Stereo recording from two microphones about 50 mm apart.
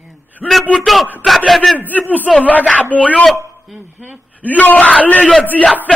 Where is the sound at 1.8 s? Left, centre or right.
Left.